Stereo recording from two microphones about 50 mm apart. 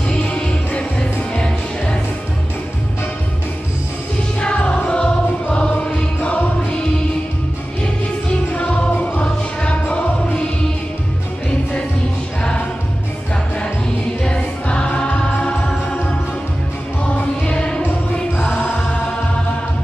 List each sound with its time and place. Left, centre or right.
0.1 s music: centre
4.4 s music: left
8.5 s music: centre
12.4 s music: centre
14.2 s music: centre
17.4 s music: centre
18.4 s choir: left